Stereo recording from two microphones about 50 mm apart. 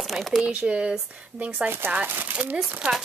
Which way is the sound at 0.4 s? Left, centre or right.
Right.